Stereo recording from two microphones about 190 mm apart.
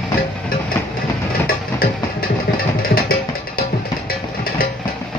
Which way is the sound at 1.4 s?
50° left (ahead or behind).